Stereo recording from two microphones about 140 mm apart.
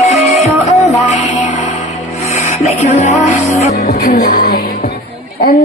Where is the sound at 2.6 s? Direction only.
50° left (ahead or behind).